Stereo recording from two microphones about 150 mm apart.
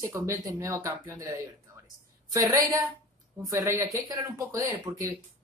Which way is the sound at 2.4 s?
20° right (ahead or behind).